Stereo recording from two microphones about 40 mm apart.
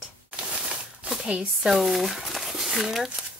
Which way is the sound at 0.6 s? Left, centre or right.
Right.